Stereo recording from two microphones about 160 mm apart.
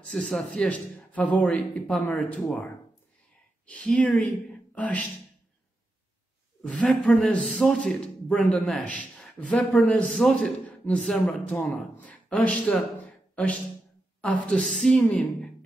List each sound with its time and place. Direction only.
0.0 s a man's voice: 5° left (ahead or behind)
6.7 s a man's voice: 5° left (ahead or behind)